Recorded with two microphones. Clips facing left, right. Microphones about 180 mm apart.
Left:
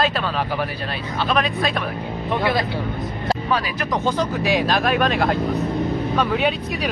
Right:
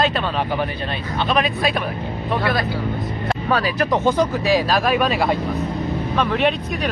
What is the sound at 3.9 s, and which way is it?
Speech, 15° right (ahead or behind).